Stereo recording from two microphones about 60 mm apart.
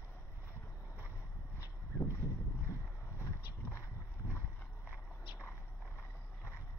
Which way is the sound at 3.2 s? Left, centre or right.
Left.